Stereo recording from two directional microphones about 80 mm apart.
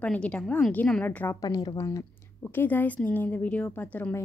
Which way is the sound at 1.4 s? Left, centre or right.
Left.